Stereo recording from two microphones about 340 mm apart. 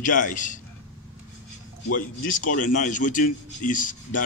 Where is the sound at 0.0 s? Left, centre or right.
Left.